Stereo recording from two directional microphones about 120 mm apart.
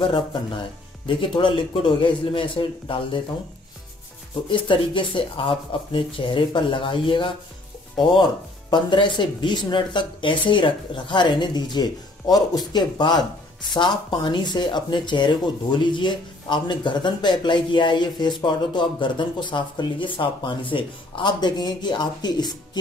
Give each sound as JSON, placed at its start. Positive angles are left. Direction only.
{"t": 0.0, "sound": "speech", "side_deg": 40}
{"t": 4.5, "sound": "speech", "side_deg": 45}